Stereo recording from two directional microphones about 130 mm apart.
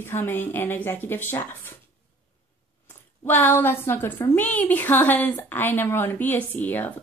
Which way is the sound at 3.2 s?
15° left (ahead or behind).